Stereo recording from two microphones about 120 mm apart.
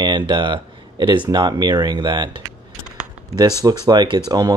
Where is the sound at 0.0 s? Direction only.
40° right (ahead or behind).